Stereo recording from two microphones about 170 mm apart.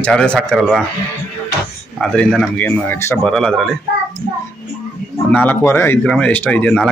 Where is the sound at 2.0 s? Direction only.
5° left (ahead or behind).